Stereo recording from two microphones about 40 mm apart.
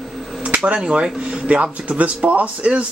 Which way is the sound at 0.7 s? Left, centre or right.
Centre.